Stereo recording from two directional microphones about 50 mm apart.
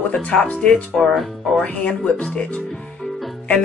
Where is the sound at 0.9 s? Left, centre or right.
Centre.